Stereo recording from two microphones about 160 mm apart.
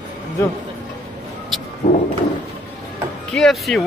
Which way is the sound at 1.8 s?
70° left (ahead or behind).